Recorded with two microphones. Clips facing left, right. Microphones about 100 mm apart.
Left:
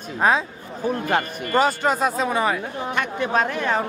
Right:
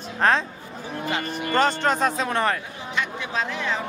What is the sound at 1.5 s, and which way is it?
Speech, 10° left (ahead or behind).